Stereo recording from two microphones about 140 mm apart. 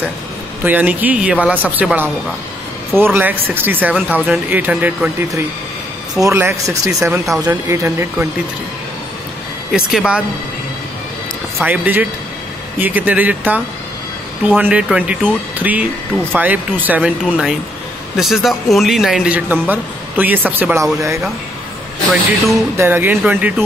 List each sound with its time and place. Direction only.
0.7 s speech: 10° right (ahead or behind)
6.1 s speech: 20° right (ahead or behind)
9.7 s speech: centre (ahead or behind)
11.6 s speech: 10° right (ahead or behind)
14.6 s a man's voice: 10° right (ahead or behind)
22.8 s speech: 15° right (ahead or behind)